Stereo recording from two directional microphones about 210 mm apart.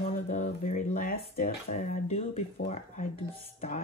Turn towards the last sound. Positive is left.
turn(degrees=30)  # may be behind; listen again after turning